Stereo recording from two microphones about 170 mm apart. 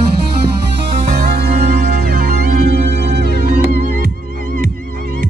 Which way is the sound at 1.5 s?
60° right (ahead or behind).